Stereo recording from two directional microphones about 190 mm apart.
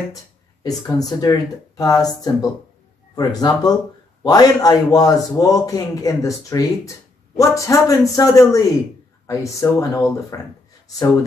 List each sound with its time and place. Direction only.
0.7 s a man's voice: 20° left (ahead or behind)